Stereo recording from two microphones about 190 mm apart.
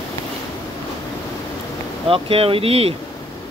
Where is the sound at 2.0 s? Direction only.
30° right (ahead or behind).